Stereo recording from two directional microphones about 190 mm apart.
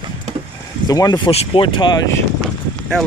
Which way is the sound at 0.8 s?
20° left (ahead or behind).